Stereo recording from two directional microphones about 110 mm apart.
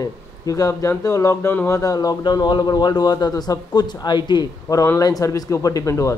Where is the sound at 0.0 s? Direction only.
30° left (ahead or behind).